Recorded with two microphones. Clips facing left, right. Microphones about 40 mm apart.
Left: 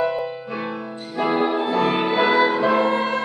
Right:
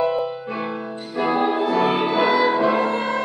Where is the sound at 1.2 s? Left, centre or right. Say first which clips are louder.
Even; centre.